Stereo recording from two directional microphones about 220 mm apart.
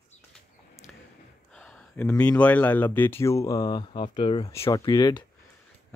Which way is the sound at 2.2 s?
5° left (ahead or behind).